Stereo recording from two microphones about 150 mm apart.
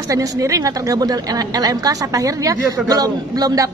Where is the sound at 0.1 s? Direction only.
20° right (ahead or behind).